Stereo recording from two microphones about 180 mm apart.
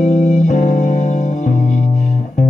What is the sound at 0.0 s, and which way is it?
Music, 40° left (ahead or behind).